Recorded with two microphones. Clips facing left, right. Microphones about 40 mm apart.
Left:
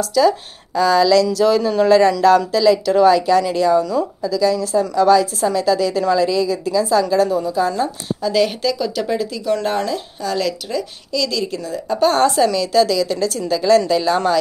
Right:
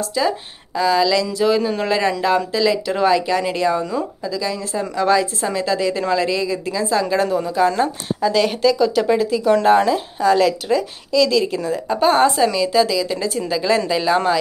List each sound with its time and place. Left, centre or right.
0.2 s speech: right
0.7 s a woman's voice: centre
1.2 s a woman's voice: right
8.2 s a woman's voice: centre